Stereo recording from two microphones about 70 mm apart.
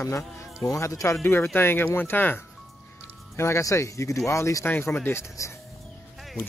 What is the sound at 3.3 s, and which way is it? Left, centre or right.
Speech, left.